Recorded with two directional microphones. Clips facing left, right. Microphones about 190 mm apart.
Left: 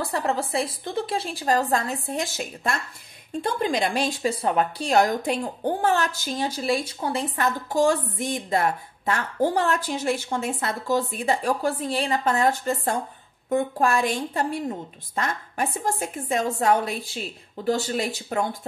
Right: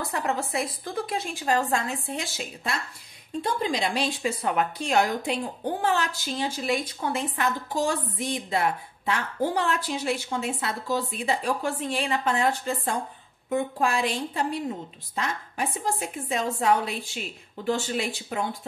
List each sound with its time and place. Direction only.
0.0 s a woman's voice: 30° left (ahead or behind)